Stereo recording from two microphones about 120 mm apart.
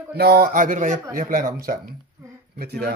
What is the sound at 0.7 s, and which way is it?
Speech, 90° right.